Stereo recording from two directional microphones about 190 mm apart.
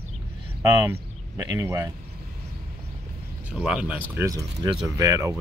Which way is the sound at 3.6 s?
5° right (ahead or behind).